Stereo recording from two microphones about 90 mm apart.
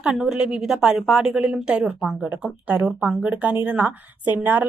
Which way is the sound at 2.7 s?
20° right (ahead or behind).